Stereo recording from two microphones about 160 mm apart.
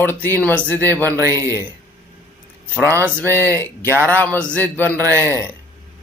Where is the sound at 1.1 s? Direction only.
20° right (ahead or behind).